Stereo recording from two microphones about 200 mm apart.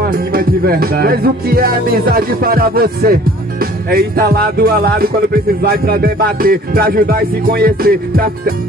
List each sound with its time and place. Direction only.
0.1 s music: 45° right (ahead or behind)